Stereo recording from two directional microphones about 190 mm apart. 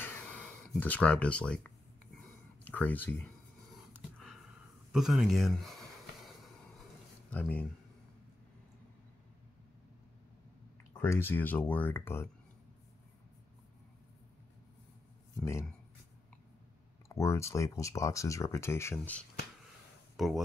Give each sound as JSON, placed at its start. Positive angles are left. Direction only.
{"t": 0.0, "sound": "a sound", "side_deg": 10}
{"t": 2.6, "sound": "speech", "side_deg": 10}
{"t": 3.7, "sound": "dog", "side_deg": 0}
{"t": 4.9, "sound": "a sound", "side_deg": -5}
{"t": 7.2, "sound": "speech", "side_deg": 5}
{"t": 11.0, "sound": "speech", "side_deg": 10}
{"t": 17.1, "sound": "speech", "side_deg": 15}
{"t": 20.2, "sound": "speech", "side_deg": 0}